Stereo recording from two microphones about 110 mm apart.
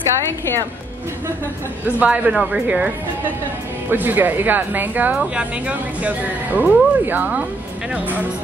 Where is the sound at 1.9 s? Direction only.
15° right (ahead or behind).